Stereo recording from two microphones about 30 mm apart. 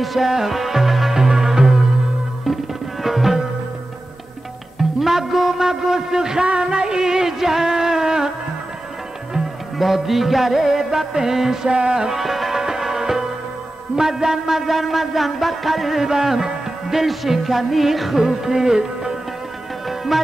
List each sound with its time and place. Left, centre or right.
0.0 s music: centre
2.4 s tabla: centre
4.7 s music: centre
6.4 s music: right; by 8.3 s centre
9.9 s music: centre; by 12.2 s right
12.2 s music: centre
14.7 s music: centre
16.0 s music: centre
18.2 s music: centre
20.1 s music: centre